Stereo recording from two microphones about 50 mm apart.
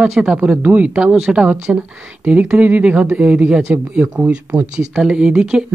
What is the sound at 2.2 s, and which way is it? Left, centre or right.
Speech, right.